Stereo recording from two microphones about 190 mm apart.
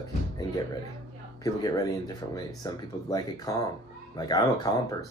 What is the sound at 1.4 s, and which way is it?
Speech, 20° left (ahead or behind).